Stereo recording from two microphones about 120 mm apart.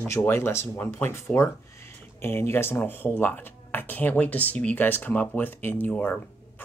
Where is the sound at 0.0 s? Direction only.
20° left (ahead or behind).